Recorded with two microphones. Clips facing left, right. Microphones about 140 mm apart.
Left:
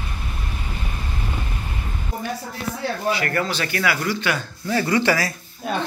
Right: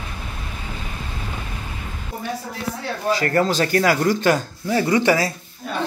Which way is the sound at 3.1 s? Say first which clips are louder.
Right 5 dB; 35° right (ahead or behind).